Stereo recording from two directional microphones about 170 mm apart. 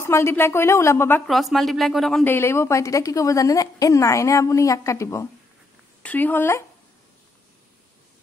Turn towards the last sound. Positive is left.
turn(degrees=15)  # may be behind; listen again after turning